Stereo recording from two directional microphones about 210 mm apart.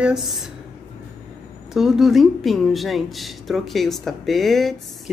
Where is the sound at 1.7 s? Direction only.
Centre (ahead or behind).